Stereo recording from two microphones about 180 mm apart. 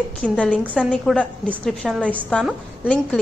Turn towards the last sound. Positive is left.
turn(degrees=5)  # may be behind; listen again after turning